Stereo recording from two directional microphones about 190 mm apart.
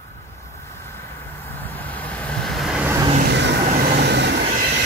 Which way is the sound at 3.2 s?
70° right (ahead or behind).